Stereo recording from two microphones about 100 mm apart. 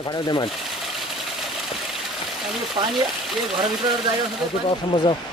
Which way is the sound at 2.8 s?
45° right (ahead or behind).